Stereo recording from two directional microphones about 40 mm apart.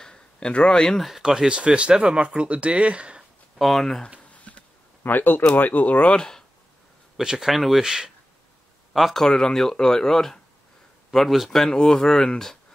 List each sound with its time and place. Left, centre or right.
0.0 s a sound: left
1.2 s speech: centre
1.5 s speech: right
3.2 s a sound: centre
4.3 s a sound: left
5.0 s speech: left
5.6 s speech: left
6.1 s speech: centre
7.2 s speech: centre
7.5 s speech: centre
7.8 s speech: centre
8.9 s speech: centre
9.2 s a man's voice: centre
11.5 s speech: centre